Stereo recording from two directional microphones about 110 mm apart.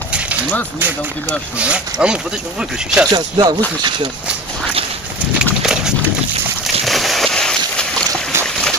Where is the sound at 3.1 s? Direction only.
40° right (ahead or behind).